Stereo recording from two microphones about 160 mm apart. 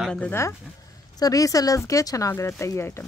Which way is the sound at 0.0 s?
10° left (ahead or behind).